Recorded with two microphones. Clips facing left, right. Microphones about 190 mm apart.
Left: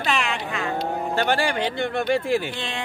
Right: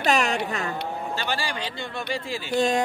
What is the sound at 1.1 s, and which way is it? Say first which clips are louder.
Speech: left 10 dB; 55° left (ahead or behind).